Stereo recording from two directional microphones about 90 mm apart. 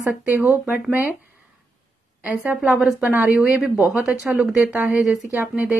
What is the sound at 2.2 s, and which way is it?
Speech, 15° right (ahead or behind).